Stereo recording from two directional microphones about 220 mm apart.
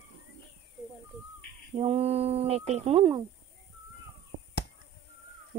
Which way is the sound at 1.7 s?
25° right (ahead or behind).